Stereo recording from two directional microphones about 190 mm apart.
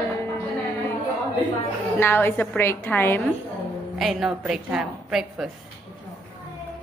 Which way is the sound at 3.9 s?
Centre (ahead or behind).